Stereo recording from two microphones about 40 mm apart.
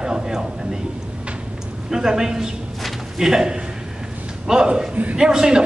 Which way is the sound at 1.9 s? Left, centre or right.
Centre.